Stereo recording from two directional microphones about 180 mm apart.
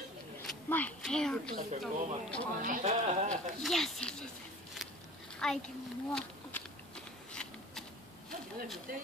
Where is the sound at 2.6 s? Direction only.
45° right (ahead or behind).